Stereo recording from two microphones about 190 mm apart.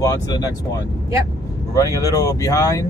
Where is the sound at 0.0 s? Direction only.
20° left (ahead or behind).